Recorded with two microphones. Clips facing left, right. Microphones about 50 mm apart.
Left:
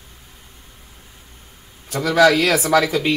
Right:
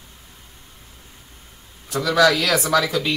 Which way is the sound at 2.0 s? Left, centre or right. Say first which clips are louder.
Left 3 dB; left.